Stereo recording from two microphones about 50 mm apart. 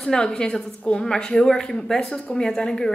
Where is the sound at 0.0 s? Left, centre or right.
Centre.